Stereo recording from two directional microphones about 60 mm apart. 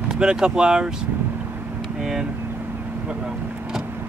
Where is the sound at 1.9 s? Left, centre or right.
Centre.